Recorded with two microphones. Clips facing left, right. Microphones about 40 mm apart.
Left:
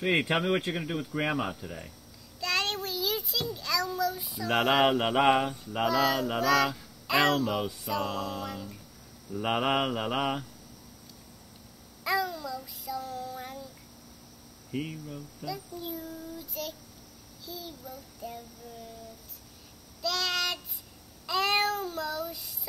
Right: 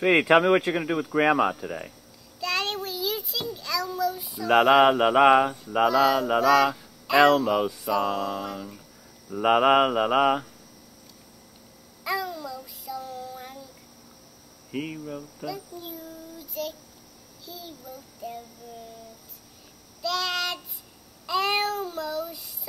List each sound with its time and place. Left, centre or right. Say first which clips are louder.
0.2 s speech: right 9 dB; right
2.4 s child singing: right 2 dB; centre
5.9 s speech: right 5 dB; centre
9.3 s speech: right 8 dB; centre
12.0 s child singing: even; centre
14.7 s speech: right 3 dB; right
15.4 s a child's voice: even; centre
17.5 s child singing: right 1 dB; centre
20.0 s child singing: right 3 dB; centre
21.3 s speech: right 2 dB; centre